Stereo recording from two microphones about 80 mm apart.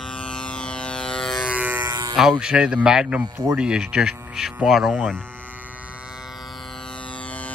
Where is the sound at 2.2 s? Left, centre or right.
Centre.